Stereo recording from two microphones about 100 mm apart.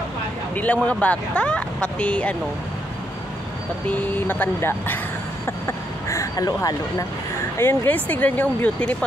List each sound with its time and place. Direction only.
0.6 s speech: 15° left (ahead or behind)
3.9 s speech: 15° left (ahead or behind)
5.7 s vehicle: 30° left (ahead or behind)
7.5 s speech: 20° left (ahead or behind)